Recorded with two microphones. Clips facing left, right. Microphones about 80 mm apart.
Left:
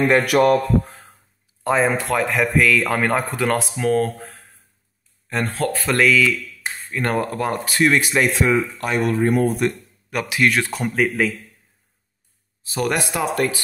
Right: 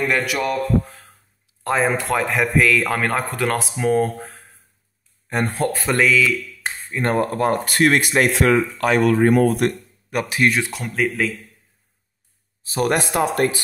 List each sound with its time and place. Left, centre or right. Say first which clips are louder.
0.2 s speech: left 7 dB; left
0.8 s a sound: left 1 dB; left
1.6 s speech: left 1 dB; centre
5.3 s speech: right 1 dB; right; by 6.5 s centre
6.9 s speech: right 2 dB; right
8.3 s speech: right 2 dB; right
10.1 s speech: even; right
10.8 s speech: left 2 dB; centre
12.6 s speech: right 2 dB; right